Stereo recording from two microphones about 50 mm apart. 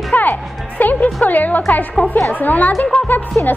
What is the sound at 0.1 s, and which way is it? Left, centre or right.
Music, left.